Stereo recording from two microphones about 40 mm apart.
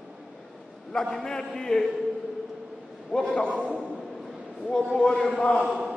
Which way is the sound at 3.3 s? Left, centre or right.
Left.